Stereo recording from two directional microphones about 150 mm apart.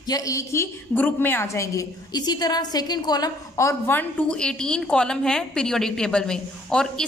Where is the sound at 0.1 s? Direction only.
20° left (ahead or behind).